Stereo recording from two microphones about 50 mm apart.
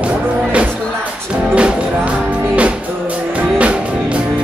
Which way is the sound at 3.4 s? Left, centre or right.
Right.